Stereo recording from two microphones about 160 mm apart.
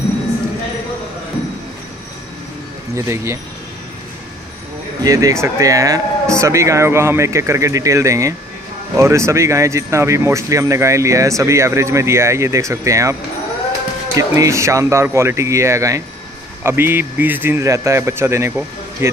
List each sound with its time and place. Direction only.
2.9 s speech: 15° right (ahead or behind)
5.0 s speech: 20° right (ahead or behind)
14.1 s speech: 20° right (ahead or behind)